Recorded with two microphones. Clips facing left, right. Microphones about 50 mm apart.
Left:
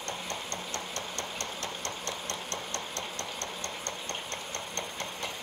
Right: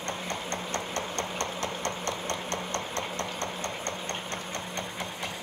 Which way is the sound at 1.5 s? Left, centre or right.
Right.